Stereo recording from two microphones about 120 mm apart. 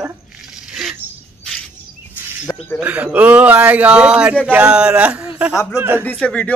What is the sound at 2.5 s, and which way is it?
Speech, 15° left (ahead or behind).